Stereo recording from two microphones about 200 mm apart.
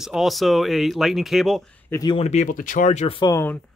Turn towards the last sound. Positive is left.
turn(degrees=10)  # may be behind; listen again after turning